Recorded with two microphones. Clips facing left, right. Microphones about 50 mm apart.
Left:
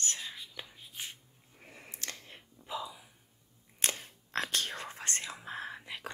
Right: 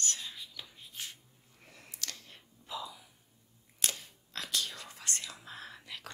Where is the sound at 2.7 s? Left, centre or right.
Centre.